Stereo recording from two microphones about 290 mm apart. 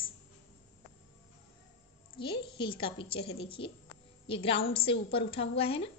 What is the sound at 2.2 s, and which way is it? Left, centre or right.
A woman's voice, centre.